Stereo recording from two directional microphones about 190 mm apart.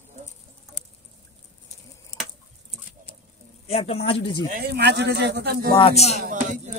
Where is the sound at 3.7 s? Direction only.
30° left (ahead or behind).